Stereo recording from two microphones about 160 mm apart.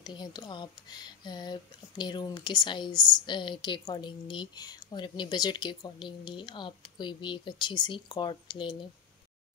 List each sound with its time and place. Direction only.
0.0 s speech: 25° left (ahead or behind)